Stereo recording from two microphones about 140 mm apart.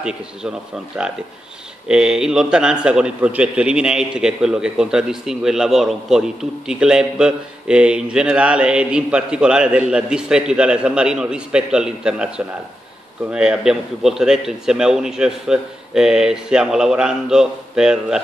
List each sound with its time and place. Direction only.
0.0 s a man's voice: 5° right (ahead or behind)